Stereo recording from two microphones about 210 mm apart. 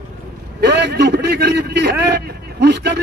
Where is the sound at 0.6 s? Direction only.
55° right (ahead or behind).